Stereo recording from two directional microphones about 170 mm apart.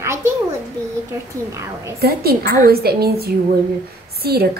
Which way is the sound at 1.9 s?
65° right (ahead or behind).